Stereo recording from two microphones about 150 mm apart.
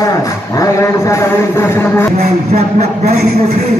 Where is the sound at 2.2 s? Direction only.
45° right (ahead or behind).